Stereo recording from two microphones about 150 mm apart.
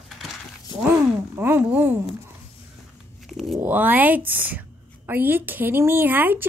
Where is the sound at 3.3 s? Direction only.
Centre (ahead or behind).